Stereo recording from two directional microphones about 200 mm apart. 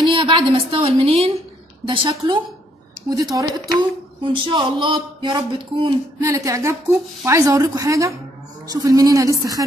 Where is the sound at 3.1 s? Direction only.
20° right (ahead or behind).